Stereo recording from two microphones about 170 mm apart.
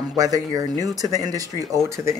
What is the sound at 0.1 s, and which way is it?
Speech, 20° right (ahead or behind).